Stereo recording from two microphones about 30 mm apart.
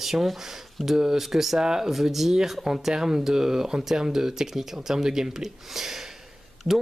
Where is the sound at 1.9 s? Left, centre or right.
Centre.